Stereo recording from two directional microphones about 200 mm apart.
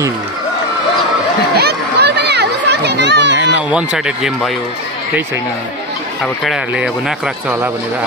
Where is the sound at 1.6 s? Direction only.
55° right (ahead or behind).